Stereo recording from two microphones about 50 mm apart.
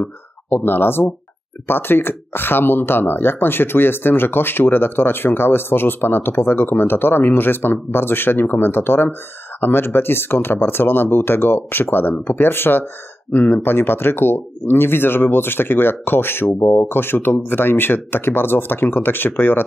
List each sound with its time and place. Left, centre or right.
0.5 s speech: left
16.4 s speech: left
16.9 s speech: left